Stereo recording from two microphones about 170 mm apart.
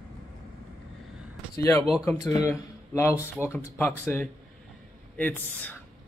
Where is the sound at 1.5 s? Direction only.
15° left (ahead or behind).